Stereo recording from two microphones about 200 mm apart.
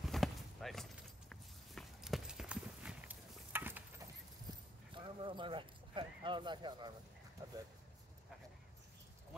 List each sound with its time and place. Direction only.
0.0 s walk: centre (ahead or behind)
4.5 s horse: 25° right (ahead or behind)